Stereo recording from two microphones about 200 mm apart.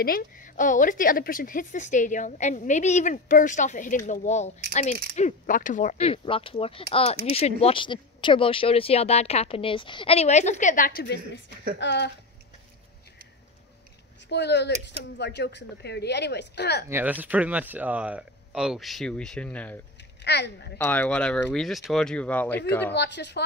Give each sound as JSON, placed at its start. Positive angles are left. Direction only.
{"t": 0.0, "sound": "speech", "side_deg": 45}
{"t": 14.3, "sound": "speech", "side_deg": 55}
{"t": 16.9, "sound": "speech", "side_deg": -10}
{"t": 20.2, "sound": "speech", "side_deg": 55}
{"t": 20.7, "sound": "speech", "side_deg": 10}
{"t": 22.9, "sound": "speech", "side_deg": 60}